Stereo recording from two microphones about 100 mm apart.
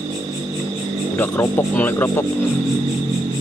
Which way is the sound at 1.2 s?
20° left (ahead or behind).